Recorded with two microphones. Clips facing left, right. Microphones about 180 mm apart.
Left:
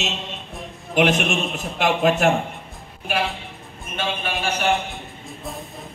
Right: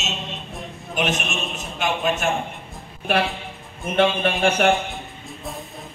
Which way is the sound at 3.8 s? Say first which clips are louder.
Right 8 dB; 60° right (ahead or behind).